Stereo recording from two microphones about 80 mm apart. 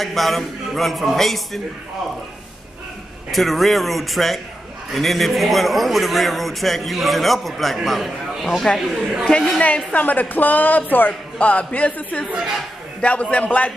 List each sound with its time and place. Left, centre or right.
0.0 s a man's voice: centre
3.3 s a man's voice: centre
9.5 s a man's voice: centre